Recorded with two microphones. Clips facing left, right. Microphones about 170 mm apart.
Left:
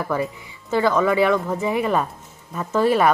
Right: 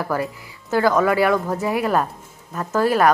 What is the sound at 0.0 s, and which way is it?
A woman's voice, centre (ahead or behind).